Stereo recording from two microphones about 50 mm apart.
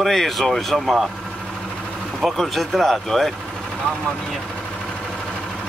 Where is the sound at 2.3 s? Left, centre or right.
Centre.